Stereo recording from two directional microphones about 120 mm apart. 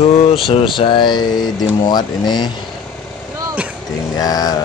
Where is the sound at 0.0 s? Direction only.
55° left (ahead or behind); by 2.5 s 35° left (ahead or behind).